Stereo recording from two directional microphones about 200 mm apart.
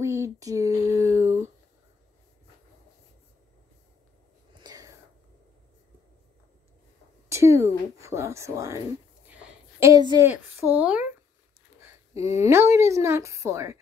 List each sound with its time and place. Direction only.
0.0 s a sound: 15° right (ahead or behind)
4.6 s whispering: 20° right (ahead or behind)
7.2 s speech: 15° right (ahead or behind)
9.3 s a sound: 10° right (ahead or behind)
10.3 s a woman's voice: 10° right (ahead or behind)
12.2 s a woman's voice: 15° right (ahead or behind)